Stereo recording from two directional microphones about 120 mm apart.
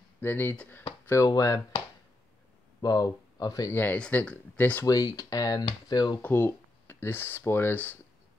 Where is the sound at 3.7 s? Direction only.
15° left (ahead or behind).